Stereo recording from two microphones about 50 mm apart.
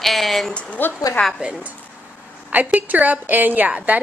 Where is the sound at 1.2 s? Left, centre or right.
Left.